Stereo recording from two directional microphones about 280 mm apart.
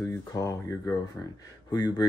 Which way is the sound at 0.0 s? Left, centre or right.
Centre.